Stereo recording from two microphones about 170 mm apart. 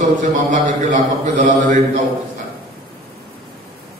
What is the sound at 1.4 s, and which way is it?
Speech, 50° right (ahead or behind).